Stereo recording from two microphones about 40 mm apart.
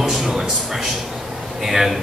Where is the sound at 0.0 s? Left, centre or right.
Centre.